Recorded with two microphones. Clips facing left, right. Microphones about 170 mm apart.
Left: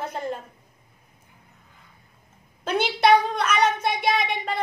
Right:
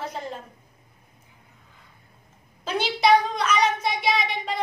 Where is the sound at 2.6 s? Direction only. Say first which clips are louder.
Left 2 dB; 55° left (ahead or behind).